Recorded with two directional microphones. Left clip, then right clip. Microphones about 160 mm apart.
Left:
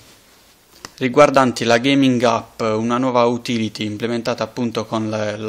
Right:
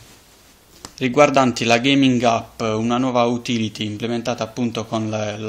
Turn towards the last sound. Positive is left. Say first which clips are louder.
# left 2 dB
turn(degrees=45)  # may be behind; listen again after turning